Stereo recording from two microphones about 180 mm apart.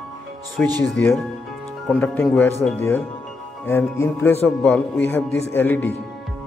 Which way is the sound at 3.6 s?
15° left (ahead or behind).